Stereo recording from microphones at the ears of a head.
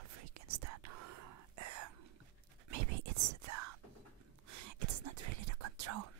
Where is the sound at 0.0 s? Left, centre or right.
Right.